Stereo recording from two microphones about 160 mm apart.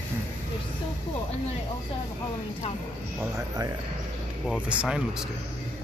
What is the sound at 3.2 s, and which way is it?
Speech, 20° right (ahead or behind).